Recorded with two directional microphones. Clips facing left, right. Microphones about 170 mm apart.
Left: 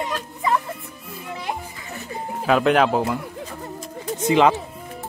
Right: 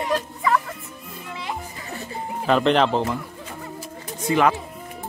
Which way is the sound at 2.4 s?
5° left (ahead or behind).